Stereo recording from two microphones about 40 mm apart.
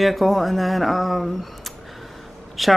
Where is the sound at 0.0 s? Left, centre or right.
Centre.